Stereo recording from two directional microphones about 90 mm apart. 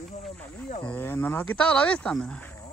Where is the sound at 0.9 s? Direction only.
20° left (ahead or behind).